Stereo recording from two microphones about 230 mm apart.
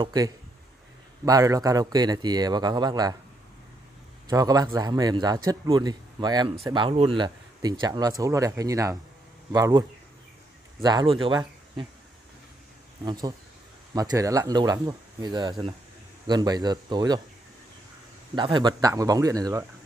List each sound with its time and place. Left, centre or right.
0.0 s a man's voice: centre
4.3 s a man's voice: centre
13.0 s a man's voice: centre
18.3 s a man's voice: centre